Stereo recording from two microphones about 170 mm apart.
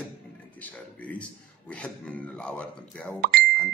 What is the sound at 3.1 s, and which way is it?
Speech, 70° right (ahead or behind).